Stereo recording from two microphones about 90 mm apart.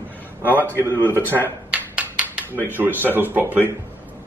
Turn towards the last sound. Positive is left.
turn(degrees=-20)  # may be behind; listen again after turning